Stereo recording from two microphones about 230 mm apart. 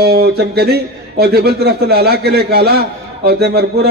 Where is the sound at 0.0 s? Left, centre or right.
Right.